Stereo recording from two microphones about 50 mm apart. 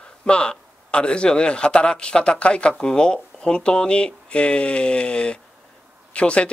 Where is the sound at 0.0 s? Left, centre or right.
Left.